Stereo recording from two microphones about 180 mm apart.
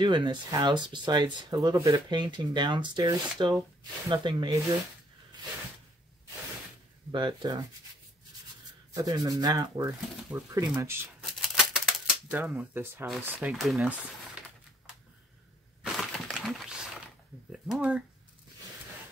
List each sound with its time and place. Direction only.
0.0 s speech: 25° right (ahead or behind)
7.1 s speech: 25° right (ahead or behind)
8.9 s speech: 20° right (ahead or behind)
11.4 s typewriter: 5° right (ahead or behind)
13.2 s speech: 5° right (ahead or behind)
15.8 s a sound: centre (ahead or behind)
17.5 s speech: 5° right (ahead or behind)